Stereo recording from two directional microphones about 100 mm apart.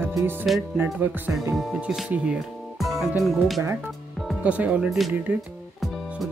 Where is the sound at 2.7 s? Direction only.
Centre (ahead or behind).